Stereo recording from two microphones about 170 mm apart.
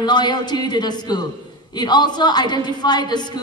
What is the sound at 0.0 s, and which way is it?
A woman's voice, 25° left (ahead or behind).